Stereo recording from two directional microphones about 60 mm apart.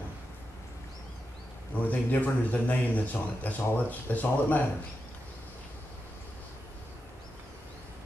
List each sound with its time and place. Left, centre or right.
1.9 s speech: left